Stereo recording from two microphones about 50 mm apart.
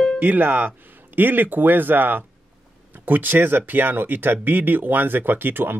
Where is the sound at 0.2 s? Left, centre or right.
Right.